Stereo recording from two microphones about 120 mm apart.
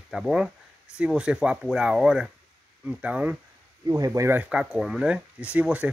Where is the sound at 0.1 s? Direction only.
5° right (ahead or behind).